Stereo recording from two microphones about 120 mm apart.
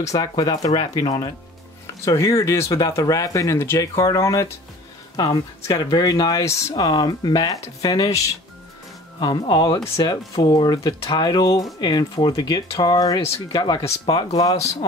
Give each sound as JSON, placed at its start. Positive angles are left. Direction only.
{"t": 0.0, "sound": "speech", "side_deg": 30}
{"t": 2.0, "sound": "speech", "side_deg": 25}
{"t": 9.5, "sound": "speech", "side_deg": 35}
{"t": 14.4, "sound": "speech", "side_deg": 30}